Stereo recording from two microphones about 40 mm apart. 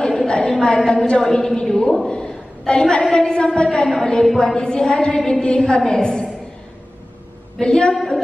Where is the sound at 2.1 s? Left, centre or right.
Left.